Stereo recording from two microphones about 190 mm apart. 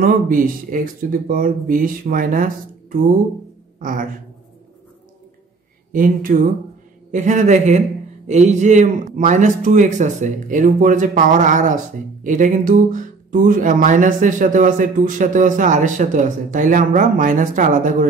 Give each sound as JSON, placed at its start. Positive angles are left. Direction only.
{"t": 0.0, "sound": "speech", "side_deg": -45}
{"t": 5.9, "sound": "a man's voice", "side_deg": -45}